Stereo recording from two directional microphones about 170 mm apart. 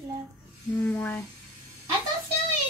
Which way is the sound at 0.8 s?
10° left (ahead or behind).